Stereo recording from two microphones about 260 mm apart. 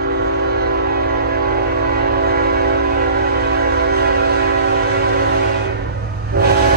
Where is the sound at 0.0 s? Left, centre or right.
Right.